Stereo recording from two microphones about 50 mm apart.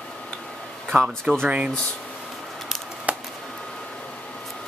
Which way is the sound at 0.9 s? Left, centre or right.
Right.